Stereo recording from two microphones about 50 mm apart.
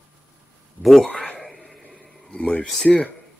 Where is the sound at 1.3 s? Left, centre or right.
Centre.